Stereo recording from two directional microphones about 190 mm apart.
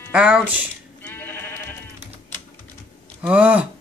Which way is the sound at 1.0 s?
10° left (ahead or behind).